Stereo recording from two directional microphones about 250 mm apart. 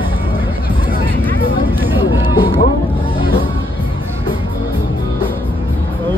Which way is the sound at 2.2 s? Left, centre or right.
Centre.